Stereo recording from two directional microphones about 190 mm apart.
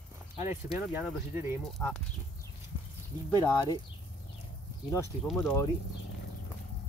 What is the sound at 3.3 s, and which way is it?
Speech, 20° left (ahead or behind).